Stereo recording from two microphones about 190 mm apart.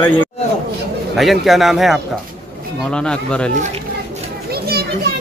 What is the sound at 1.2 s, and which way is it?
Speech, centre (ahead or behind).